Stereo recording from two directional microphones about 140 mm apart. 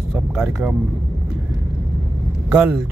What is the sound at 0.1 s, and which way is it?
Vehicle, 5° right (ahead or behind).